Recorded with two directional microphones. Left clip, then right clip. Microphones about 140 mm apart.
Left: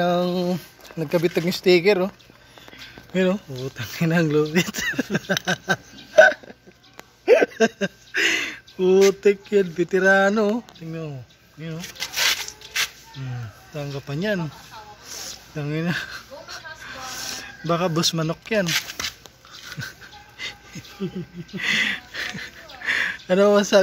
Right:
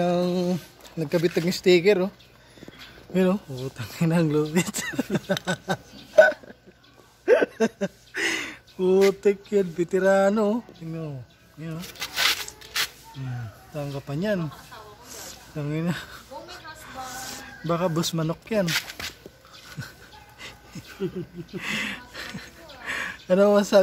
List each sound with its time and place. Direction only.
0.0 s speech: 5° left (ahead or behind)
3.1 s speech: 15° right (ahead or behind)
3.5 s speech: centre (ahead or behind)
5.3 s a sound: centre (ahead or behind)
9.2 s speech: 5° left (ahead or behind)
11.6 s zipper: 5° left (ahead or behind)
13.7 s speech: 10° left (ahead or behind)
15.0 s a sound: 5° left (ahead or behind)
19.8 s dog: 10° left (ahead or behind)
21.5 s a sound: 5° left (ahead or behind)